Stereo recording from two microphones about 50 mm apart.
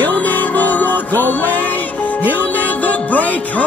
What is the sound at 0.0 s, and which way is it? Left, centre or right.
Music, left.